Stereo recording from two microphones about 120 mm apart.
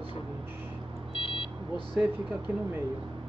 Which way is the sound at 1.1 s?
50° left (ahead or behind).